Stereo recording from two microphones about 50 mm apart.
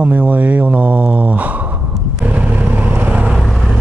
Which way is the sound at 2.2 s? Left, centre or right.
Right.